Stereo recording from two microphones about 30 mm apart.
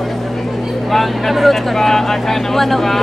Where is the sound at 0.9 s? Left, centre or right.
Centre.